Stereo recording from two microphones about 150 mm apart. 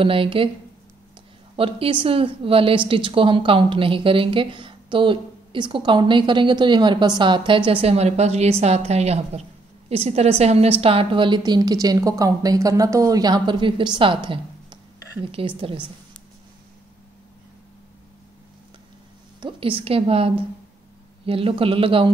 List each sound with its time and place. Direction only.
0.0 s speech: 35° right (ahead or behind)
1.6 s speech: 35° right (ahead or behind)
19.4 s speech: 35° right (ahead or behind)